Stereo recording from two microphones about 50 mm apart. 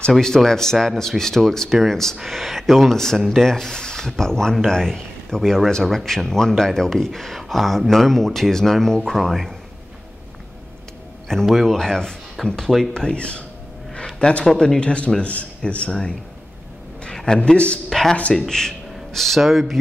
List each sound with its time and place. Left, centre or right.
0.1 s speech: centre
11.4 s speech: centre
12.9 s speech: centre
14.4 s speech: centre
17.1 s a sound: centre
17.4 s speech: left
17.8 s a sound: centre
18.5 s speech: centre